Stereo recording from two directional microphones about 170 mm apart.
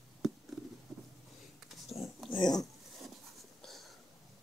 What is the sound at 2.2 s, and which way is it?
Pig, 25° left (ahead or behind).